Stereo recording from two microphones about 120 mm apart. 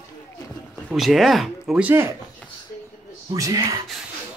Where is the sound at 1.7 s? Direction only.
15° right (ahead or behind).